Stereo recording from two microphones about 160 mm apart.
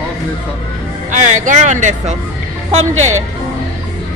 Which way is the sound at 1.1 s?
50° right (ahead or behind).